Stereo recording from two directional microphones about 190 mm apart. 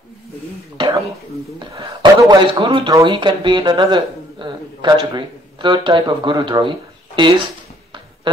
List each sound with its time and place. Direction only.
0.7 s throat clearing: 25° right (ahead or behind)
1.7 s speech: 20° right (ahead or behind)